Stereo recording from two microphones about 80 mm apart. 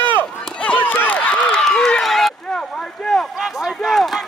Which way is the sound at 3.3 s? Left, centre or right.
Centre.